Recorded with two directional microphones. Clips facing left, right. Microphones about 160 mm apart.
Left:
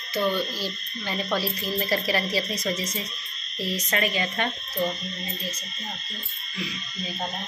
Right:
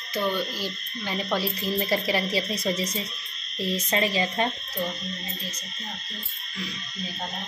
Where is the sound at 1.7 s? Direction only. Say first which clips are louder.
Even; 20° right (ahead or behind).